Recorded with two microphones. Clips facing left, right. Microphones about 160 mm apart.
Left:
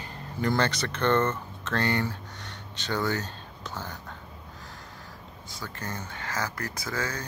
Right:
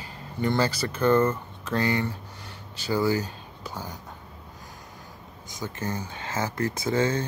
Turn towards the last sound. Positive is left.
turn(degrees=-25)  # may be behind; listen again after turning